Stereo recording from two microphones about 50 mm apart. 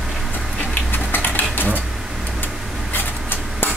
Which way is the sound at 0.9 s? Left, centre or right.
Left.